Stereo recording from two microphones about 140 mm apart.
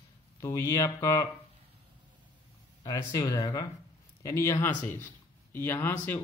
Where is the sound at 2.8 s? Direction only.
25° left (ahead or behind).